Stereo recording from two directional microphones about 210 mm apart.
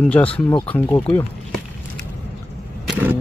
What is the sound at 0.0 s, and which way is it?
Speech, 5° left (ahead or behind).